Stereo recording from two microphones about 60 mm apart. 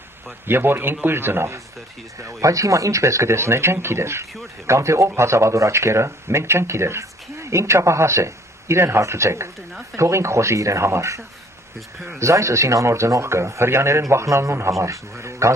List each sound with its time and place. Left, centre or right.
0.5 s speech: right
2.2 s speech: right